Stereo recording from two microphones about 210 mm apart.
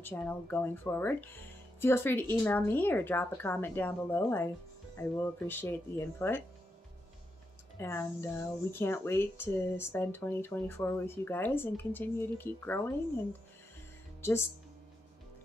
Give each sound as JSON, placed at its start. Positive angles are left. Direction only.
{"t": 0.0, "sound": "speech", "side_deg": 10}
{"t": 7.8, "sound": "speech", "side_deg": 10}